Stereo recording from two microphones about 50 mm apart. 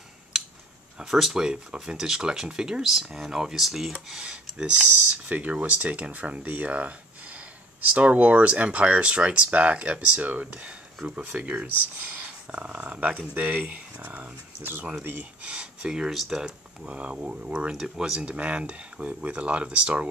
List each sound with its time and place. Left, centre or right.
0.9 s speech: centre
5.3 s speech: right
15.4 s speech: centre
16.1 s speech: centre
16.8 s speech: right
17.7 s speech: centre
18.2 s speech: right